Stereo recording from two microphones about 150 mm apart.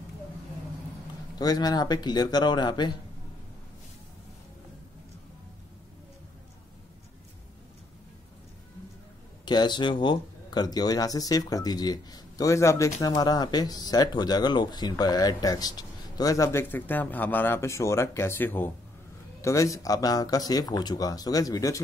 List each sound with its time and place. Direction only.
1.4 s speech: 25° left (ahead or behind)
9.4 s speech: 30° left (ahead or behind)